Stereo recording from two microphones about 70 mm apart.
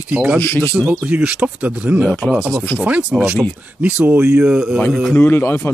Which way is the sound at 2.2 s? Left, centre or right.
Centre.